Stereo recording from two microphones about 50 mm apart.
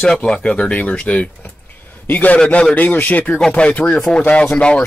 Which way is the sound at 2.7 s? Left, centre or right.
Left.